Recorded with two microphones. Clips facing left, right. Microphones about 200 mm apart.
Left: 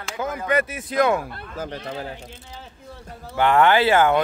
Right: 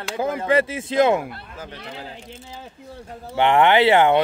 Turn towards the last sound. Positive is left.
turn(degrees=-25)  # may be behind; listen again after turning